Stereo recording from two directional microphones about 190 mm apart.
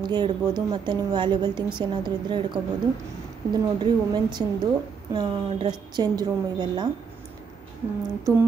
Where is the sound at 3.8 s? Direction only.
20° right (ahead or behind).